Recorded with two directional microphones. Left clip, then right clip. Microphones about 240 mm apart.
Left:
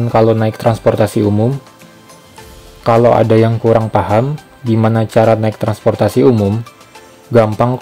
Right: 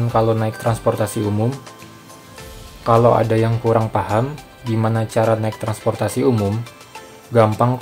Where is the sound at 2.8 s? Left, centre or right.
Left.